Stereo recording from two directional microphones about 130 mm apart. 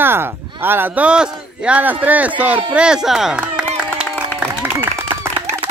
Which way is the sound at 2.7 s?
5° right (ahead or behind).